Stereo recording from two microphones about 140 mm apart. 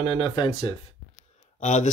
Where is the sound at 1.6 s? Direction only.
60° left (ahead or behind).